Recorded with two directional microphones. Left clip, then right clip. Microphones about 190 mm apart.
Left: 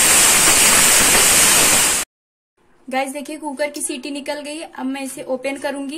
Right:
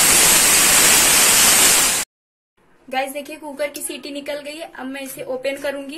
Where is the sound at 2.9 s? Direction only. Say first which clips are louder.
Left 1 dB; 50° left (ahead or behind).